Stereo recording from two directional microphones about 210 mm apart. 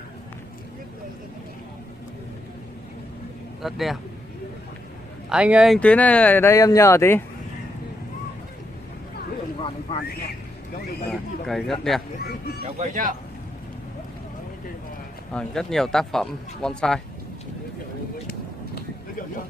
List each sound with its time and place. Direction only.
3.6 s speech: centre (ahead or behind)
5.3 s speech: 5° right (ahead or behind); by 7.2 s 10° left (ahead or behind)
11.1 s speech: centre (ahead or behind)
12.2 s speech: 45° left (ahead or behind)
12.7 s speech: 35° right (ahead or behind)
15.3 s speech: centre (ahead or behind)